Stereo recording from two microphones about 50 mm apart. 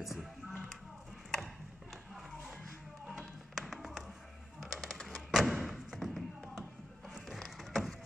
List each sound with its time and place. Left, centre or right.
0.0 s music: centre
2.1 s music: centre
4.6 s thump: centre
7.3 s a sound: centre